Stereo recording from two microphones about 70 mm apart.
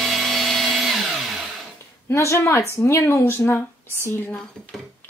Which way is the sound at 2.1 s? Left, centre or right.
Left.